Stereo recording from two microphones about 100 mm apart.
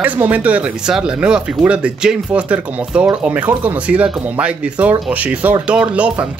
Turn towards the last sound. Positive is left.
turn(degrees=-10)  # may be behind; listen again after turning